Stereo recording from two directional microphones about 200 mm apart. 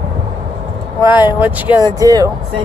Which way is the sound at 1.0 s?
10° right (ahead or behind).